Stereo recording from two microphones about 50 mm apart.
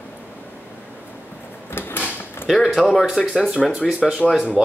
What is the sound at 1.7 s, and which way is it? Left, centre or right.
Mechanisms, left.